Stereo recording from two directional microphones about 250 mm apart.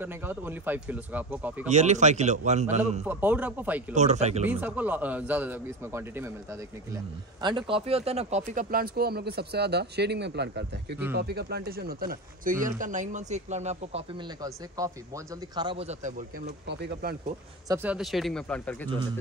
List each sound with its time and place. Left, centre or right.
0.0 s a man's voice: centre
1.7 s speech: right
3.1 s a man's voice: centre
3.9 s speech: right
4.5 s a man's voice: centre
7.4 s speech: centre
16.6 s speech: right
17.6 s speech: centre